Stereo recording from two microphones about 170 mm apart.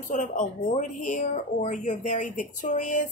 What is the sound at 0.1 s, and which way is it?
Speech, 45° left (ahead or behind).